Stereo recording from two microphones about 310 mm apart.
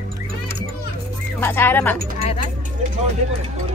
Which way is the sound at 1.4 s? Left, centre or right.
Centre.